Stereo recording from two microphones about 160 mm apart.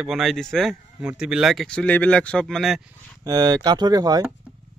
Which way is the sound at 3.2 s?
25° right (ahead or behind).